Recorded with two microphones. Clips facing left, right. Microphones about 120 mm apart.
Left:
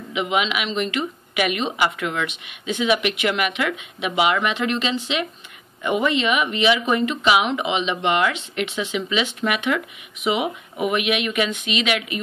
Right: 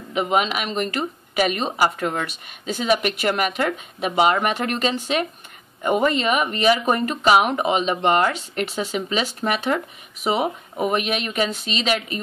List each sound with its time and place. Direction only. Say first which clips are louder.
0.1 s speech: right 2 dB; 40° right (ahead or behind)